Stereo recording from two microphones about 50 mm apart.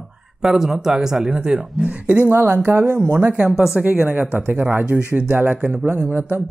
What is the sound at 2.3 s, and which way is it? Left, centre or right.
Speech, right.